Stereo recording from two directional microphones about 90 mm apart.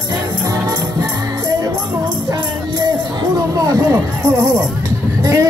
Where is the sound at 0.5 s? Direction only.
45° right (ahead or behind).